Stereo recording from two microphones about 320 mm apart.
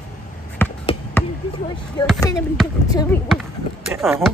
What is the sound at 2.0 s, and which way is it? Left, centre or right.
Speech, centre.